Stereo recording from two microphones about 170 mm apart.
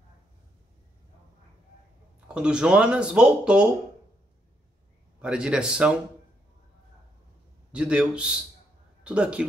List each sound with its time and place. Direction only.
2.1 s speech: 5° right (ahead or behind)
5.2 s speech: 5° right (ahead or behind)
7.7 s speech: 5° right (ahead or behind)